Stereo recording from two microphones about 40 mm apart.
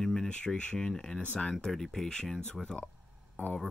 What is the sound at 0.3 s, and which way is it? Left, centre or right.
Speech, left.